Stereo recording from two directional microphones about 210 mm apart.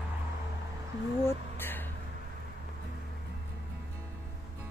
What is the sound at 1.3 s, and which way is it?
Speech, 10° left (ahead or behind).